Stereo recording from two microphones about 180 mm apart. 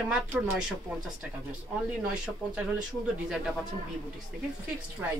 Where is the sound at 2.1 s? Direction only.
5° right (ahead or behind).